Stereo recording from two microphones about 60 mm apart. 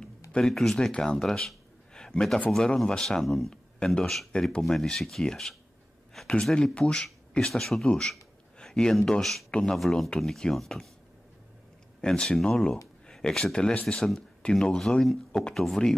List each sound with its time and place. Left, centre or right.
0.3 s speech: centre
3.3 s speech: centre
3.8 s speech: centre
9.5 s speech: centre
12.0 s speech: centre